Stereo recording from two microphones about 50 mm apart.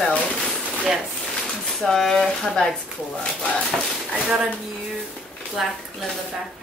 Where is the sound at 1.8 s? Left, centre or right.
Centre.